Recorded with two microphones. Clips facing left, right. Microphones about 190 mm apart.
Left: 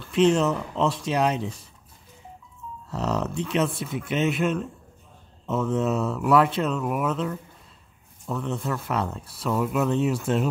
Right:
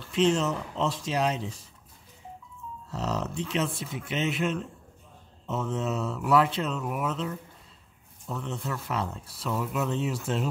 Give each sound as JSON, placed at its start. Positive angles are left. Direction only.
{"t": 0.0, "sound": "speech", "side_deg": 60}
{"t": 2.9, "sound": "speech", "side_deg": 60}